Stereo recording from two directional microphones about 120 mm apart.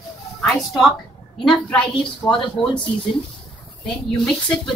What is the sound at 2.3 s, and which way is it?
Speech, 40° left (ahead or behind).